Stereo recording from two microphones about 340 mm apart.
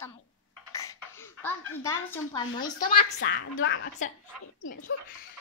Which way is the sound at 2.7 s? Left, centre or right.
Left.